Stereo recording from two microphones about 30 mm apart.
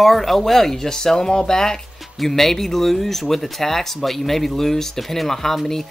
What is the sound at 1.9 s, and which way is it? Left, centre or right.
Music, centre.